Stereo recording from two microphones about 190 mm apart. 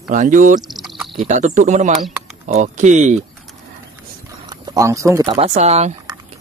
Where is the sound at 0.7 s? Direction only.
Centre (ahead or behind).